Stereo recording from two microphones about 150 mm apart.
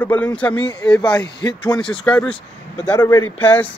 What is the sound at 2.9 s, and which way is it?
Speech, 15° left (ahead or behind).